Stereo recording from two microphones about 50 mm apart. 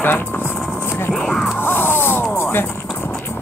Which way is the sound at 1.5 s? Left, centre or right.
Left.